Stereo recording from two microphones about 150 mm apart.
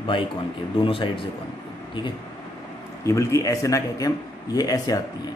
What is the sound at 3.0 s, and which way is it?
A man's voice, 20° left (ahead or behind).